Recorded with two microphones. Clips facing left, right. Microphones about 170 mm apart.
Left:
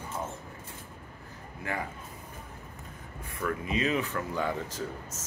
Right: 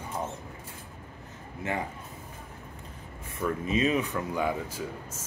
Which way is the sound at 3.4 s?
20° right (ahead or behind).